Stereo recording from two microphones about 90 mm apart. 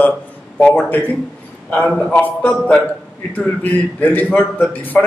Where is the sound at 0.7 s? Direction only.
20° left (ahead or behind).